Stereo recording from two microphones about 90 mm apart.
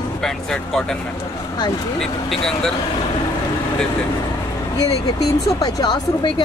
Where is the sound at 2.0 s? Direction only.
5° left (ahead or behind).